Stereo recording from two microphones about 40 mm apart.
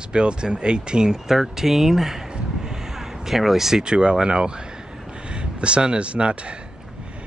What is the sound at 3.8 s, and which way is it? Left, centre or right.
Speech, right.